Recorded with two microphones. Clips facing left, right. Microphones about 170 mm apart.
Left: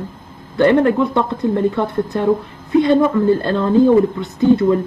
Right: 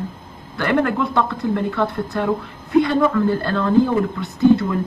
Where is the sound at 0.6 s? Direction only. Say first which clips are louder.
Left 6 dB; 20° left (ahead or behind).